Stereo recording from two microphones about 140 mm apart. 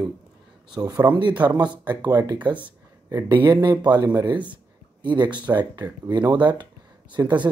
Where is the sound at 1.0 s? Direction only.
20° right (ahead or behind).